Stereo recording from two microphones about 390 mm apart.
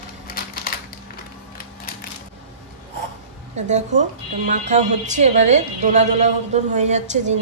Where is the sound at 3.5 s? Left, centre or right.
Centre.